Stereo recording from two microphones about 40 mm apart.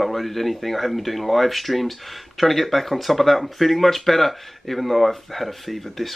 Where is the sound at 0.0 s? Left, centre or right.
Centre.